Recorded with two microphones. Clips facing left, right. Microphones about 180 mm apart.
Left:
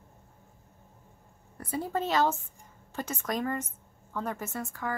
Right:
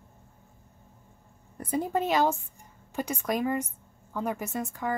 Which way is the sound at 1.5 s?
15° right (ahead or behind).